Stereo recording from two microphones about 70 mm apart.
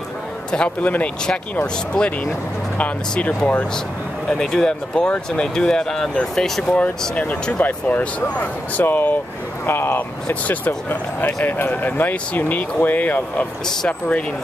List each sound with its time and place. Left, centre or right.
0.5 s speech: centre
2.0 s speech: centre
2.8 s speech: left
7.4 s speech: centre